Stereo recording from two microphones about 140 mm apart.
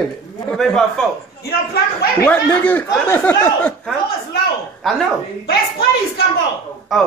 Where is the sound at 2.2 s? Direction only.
15° left (ahead or behind).